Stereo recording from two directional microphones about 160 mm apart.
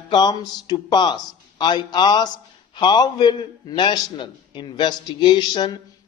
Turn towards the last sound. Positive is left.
turn(degrees=25)  # may be behind; listen again after turning